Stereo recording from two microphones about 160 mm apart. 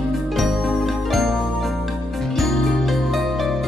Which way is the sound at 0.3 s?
Centre (ahead or behind).